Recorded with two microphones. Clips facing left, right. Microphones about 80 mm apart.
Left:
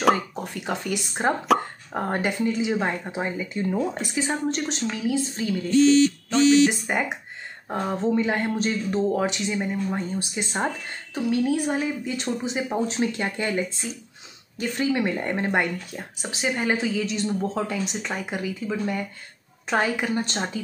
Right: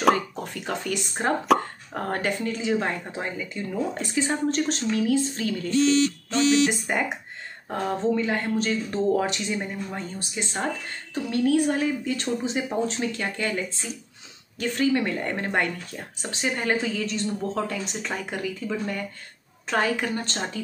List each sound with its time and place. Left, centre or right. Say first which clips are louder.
0.0 s speech: even; centre
8.1 s speech: left 3 dB; left
8.9 s speech: right 1 dB; centre
9.8 s speech: left 6 dB; centre